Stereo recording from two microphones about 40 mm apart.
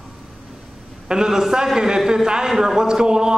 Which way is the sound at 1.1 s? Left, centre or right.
Centre.